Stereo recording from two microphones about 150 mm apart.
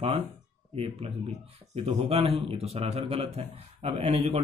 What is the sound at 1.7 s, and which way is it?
A man's voice, 45° right (ahead or behind).